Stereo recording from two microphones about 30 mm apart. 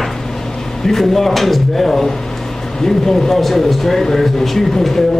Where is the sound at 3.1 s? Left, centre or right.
Centre.